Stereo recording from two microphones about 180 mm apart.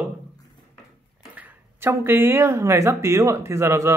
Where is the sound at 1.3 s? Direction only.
10° right (ahead or behind).